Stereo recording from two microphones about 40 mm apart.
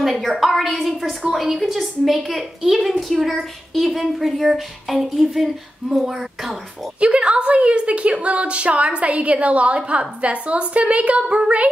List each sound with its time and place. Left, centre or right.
0.0 s a woman's voice: centre
7.0 s a woman's voice: right